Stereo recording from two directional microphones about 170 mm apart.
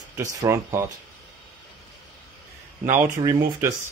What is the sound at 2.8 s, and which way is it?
Speech, 15° right (ahead or behind).